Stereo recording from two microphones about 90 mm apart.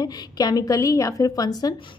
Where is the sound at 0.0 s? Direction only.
45° left (ahead or behind).